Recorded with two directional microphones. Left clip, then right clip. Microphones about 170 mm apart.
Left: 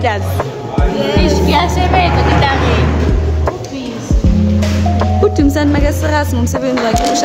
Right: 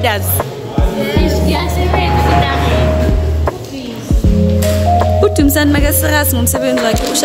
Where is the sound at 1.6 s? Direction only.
55° left (ahead or behind).